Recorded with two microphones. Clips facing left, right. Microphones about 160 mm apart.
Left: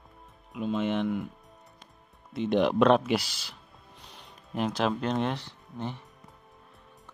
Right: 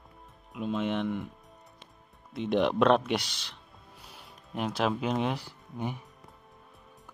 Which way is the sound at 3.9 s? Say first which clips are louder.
Left 1 dB; 5° right (ahead or behind).